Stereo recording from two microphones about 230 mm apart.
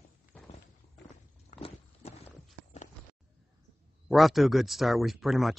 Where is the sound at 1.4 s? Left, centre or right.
Left.